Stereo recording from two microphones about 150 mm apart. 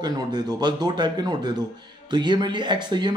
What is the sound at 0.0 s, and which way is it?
A man's voice, 30° right (ahead or behind).